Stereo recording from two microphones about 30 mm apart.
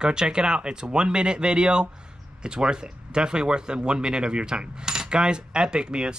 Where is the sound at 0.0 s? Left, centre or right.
Right.